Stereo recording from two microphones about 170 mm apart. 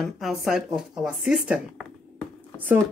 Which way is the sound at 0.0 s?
Centre (ahead or behind).